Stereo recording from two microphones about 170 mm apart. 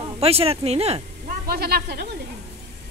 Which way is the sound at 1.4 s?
65° right (ahead or behind).